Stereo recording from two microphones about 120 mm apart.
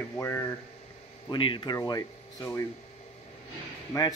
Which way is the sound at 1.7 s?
30° left (ahead or behind).